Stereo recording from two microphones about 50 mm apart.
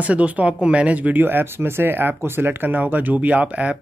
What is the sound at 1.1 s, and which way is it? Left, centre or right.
Speech, right.